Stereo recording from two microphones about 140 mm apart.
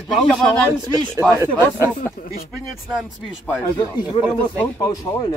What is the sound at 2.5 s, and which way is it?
Speech, centre (ahead or behind).